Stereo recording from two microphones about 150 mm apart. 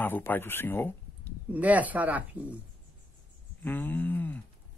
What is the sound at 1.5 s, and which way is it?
Speech, 10° right (ahead or behind).